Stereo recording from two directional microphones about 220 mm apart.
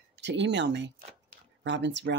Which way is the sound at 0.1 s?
55° right (ahead or behind).